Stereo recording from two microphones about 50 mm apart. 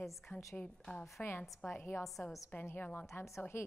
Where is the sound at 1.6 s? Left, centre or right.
Left.